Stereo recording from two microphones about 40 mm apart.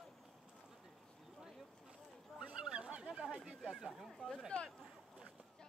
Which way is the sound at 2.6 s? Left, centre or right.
Right.